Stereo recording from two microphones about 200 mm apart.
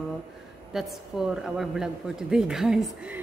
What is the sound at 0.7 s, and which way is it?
A man's voice, centre (ahead or behind).